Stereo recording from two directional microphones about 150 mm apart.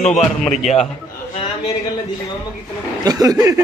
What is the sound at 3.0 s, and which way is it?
Speech, 25° right (ahead or behind).